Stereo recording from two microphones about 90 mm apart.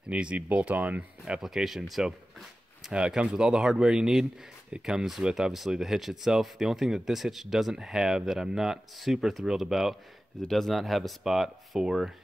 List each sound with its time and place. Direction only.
0.1 s speech: 15° right (ahead or behind)